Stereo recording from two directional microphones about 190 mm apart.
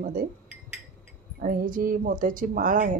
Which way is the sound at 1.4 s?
45° right (ahead or behind).